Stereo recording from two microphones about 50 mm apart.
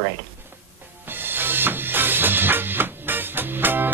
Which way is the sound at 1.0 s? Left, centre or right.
Right.